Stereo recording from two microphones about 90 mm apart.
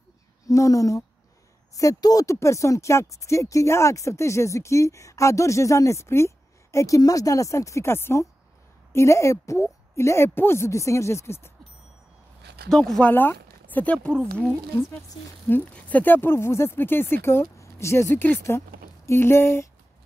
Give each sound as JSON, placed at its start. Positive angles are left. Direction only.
{"t": 0.5, "sound": "speech", "side_deg": 40}
{"t": 12.6, "sound": "speech", "side_deg": 5}
{"t": 13.0, "sound": "speech", "side_deg": 25}
{"t": 15.7, "sound": "speech", "side_deg": 20}